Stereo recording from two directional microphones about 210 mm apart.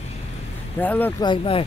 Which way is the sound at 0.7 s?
10° left (ahead or behind).